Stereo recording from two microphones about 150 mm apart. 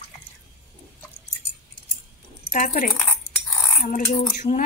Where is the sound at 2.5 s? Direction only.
70° left (ahead or behind).